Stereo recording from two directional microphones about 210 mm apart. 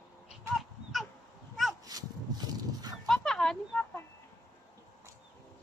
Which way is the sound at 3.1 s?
Centre (ahead or behind).